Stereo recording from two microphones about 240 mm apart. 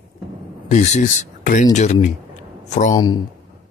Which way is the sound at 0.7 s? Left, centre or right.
Left.